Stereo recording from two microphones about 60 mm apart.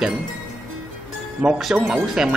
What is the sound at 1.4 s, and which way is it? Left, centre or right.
Speech, centre.